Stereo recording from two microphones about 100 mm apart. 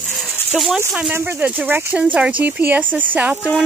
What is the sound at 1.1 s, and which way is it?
Speech, 20° right (ahead or behind).